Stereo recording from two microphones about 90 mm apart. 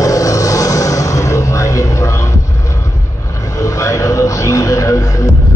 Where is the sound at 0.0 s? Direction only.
40° left (ahead or behind).